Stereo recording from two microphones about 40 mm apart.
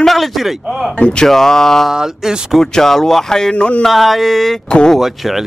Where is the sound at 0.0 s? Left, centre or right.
Centre.